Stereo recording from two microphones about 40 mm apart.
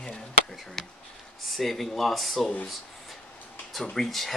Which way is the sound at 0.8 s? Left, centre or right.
Centre.